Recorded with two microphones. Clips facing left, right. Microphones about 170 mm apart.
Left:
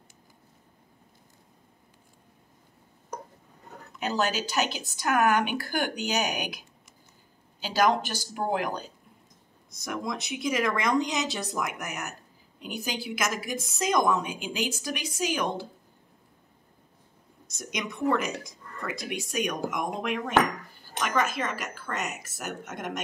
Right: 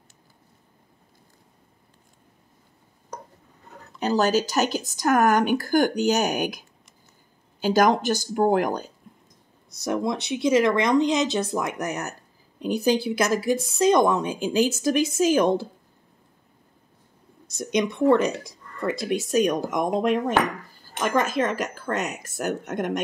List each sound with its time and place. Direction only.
4.0 s speech: 40° right (ahead or behind)
7.6 s speech: 45° right (ahead or behind)
9.8 s speech: 35° right (ahead or behind)
17.6 s speech: 30° right (ahead or behind)